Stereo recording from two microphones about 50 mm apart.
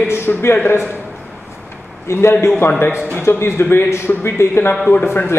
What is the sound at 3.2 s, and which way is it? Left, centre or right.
A man's voice, left.